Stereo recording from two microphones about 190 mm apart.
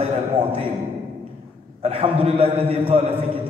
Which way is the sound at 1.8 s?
30° right (ahead or behind).